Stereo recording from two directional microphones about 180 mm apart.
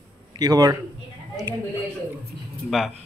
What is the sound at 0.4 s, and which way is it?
Speech, 20° right (ahead or behind).